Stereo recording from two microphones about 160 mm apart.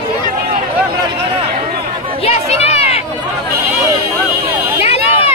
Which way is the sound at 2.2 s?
40° left (ahead or behind).